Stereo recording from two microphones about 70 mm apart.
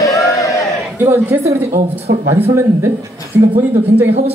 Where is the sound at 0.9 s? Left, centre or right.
Right.